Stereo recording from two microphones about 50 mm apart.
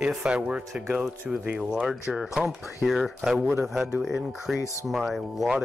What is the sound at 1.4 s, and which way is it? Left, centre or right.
Speech, right.